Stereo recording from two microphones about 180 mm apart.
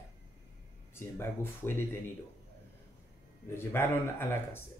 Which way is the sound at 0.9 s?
15° left (ahead or behind).